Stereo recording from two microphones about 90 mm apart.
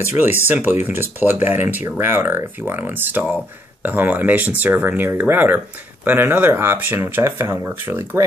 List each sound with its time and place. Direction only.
0.1 s speech: 25° right (ahead or behind)